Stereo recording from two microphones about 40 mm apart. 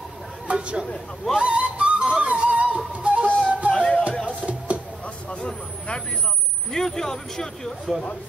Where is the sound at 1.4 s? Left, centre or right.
Right.